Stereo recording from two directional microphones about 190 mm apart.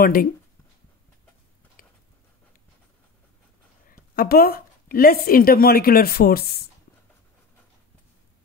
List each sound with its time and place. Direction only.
0.0 s speech: 50° left (ahead or behind)
3.9 s a woman's voice: 50° left (ahead or behind)